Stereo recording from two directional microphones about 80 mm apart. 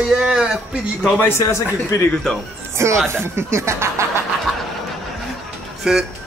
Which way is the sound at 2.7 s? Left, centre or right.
Right.